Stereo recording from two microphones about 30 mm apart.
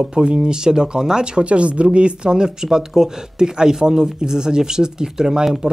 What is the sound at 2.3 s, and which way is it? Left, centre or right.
Speech, right.